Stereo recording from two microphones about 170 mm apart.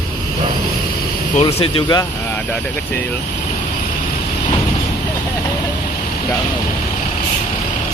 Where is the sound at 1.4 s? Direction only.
25° left (ahead or behind).